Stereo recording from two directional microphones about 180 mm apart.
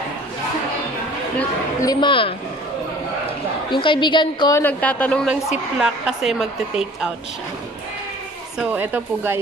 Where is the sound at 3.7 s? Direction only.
25° left (ahead or behind).